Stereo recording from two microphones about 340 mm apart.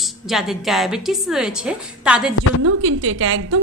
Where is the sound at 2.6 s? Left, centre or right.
Right.